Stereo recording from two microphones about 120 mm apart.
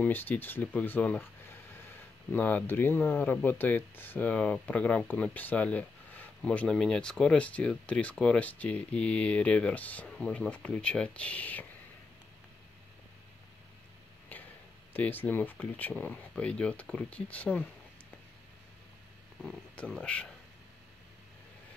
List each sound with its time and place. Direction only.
0.0 s speech: 15° left (ahead or behind)
2.3 s speech: 15° left (ahead or behind)
14.3 s a sound: 15° left (ahead or behind)
15.0 s speech: 15° left (ahead or behind)
19.4 s speech: 10° left (ahead or behind)